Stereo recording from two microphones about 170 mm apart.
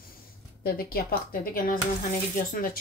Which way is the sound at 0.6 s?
65° left (ahead or behind).